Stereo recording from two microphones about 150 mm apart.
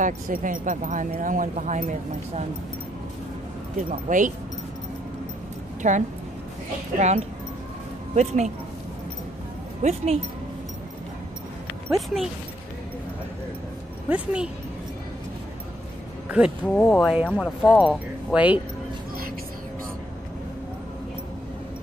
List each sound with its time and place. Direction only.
0.0 s speech: 60° right (ahead or behind)
3.9 s speech: 60° right (ahead or behind)
5.8 s speech: 55° right (ahead or behind)
9.8 s speech: 45° right (ahead or behind)
14.0 s speech: 10° right (ahead or behind)
16.3 s speech: 5° right (ahead or behind)
16.6 s speech: 5° left (ahead or behind)